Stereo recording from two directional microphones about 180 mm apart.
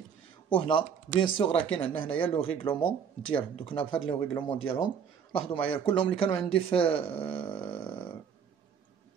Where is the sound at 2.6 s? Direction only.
30° left (ahead or behind).